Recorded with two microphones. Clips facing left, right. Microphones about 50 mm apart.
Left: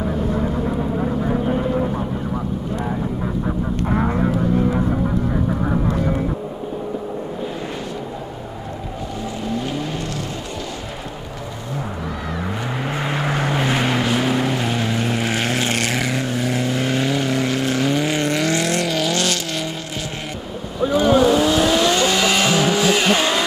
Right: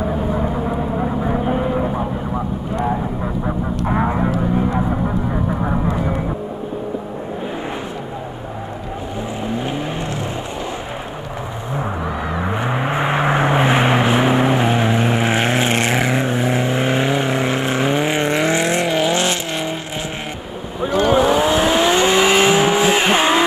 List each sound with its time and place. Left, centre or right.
0.0 s vehicle: centre
3.4 s goose: centre
4.7 s music: centre
9.2 s vehicle: right
11.7 s vehicle: right
20.8 s vehicle: centre